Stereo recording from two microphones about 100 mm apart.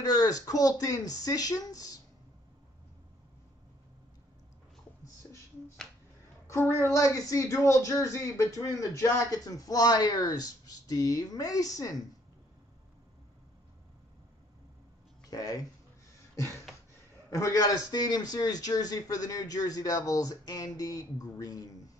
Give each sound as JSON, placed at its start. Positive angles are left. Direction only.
{"t": 0.0, "sound": "speech", "side_deg": 40}
{"t": 6.4, "sound": "a sound", "side_deg": 30}
{"t": 6.8, "sound": "speech", "side_deg": 30}
{"t": 15.2, "sound": "speech", "side_deg": 35}
{"t": 16.7, "sound": "a sound", "side_deg": 0}
{"t": 17.3, "sound": "speech", "side_deg": 35}